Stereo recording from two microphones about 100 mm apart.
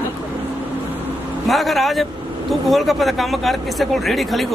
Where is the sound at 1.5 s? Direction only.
Centre (ahead or behind).